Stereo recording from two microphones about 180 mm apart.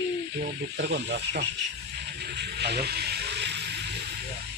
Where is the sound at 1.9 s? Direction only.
65° right (ahead or behind).